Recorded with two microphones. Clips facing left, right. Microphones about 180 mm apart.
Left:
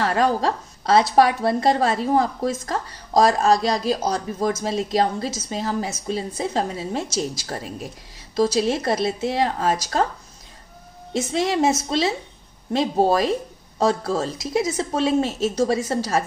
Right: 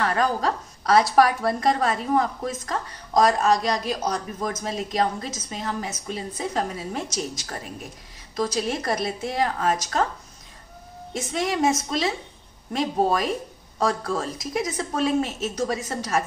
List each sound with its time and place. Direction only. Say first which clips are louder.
0.0 s a woman's voice: left 3 dB; 30° left (ahead or behind)
11.1 s speech: left 4 dB; 30° left (ahead or behind)